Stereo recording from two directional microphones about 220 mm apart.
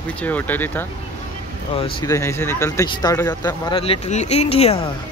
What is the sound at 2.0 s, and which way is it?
Speech, 15° left (ahead or behind).